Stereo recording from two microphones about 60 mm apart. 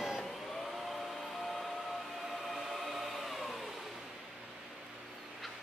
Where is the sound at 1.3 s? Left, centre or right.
Centre.